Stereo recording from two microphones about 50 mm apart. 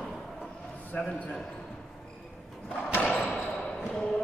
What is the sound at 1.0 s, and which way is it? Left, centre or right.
Speech, left.